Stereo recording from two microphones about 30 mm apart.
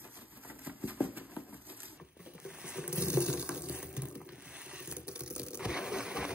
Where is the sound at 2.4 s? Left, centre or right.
Right.